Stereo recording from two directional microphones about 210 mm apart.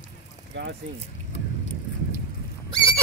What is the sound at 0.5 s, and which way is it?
Speech, 60° right (ahead or behind).